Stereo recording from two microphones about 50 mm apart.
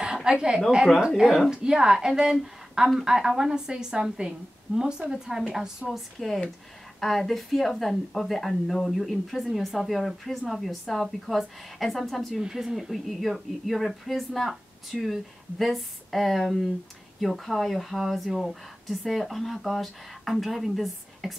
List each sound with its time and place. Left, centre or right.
0.0 s a sound: centre
1.0 s a woman's voice: centre
2.4 s a sound: centre
2.9 s a woman's voice: centre
6.1 s speech: centre
12.4 s speech: centre